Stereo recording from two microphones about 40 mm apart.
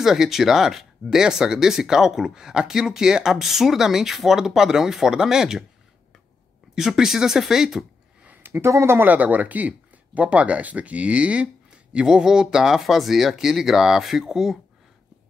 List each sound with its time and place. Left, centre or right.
0.0 s speech: centre
6.7 s speech: centre
8.4 s speech: right
9.0 s speech: right
11.9 s speech: right
12.8 s speech: centre